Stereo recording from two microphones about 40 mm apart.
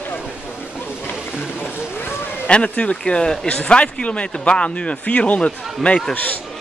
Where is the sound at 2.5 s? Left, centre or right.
Left.